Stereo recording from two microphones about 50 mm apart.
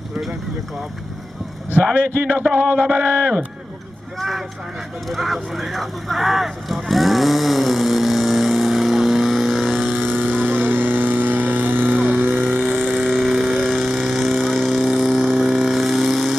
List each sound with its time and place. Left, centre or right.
2.5 s mantra: right
5.1 s vehicle: centre
10.0 s vehicle: right
12.1 s a sound: right
13.0 s vehicle: centre